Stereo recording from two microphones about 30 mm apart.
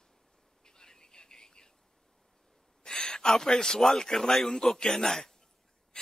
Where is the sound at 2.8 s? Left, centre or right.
Left.